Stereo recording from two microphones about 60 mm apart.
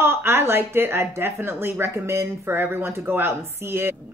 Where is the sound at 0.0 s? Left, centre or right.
Right.